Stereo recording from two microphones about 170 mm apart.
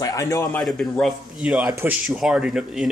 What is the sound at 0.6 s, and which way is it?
Speech, 5° left (ahead or behind).